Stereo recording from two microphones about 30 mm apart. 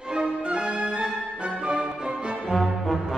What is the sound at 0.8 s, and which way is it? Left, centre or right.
Music, right.